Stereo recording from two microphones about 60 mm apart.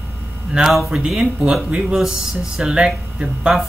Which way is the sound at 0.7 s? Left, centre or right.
Centre.